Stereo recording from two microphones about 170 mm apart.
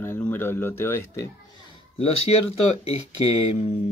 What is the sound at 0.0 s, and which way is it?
Speech, 10° left (ahead or behind).